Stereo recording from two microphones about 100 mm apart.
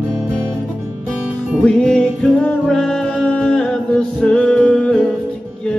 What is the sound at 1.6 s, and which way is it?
Music, 5° left (ahead or behind).